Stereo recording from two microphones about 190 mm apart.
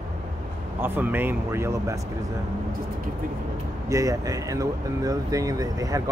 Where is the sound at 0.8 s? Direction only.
10° right (ahead or behind).